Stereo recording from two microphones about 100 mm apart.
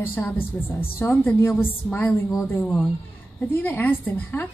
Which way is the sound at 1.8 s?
10° left (ahead or behind).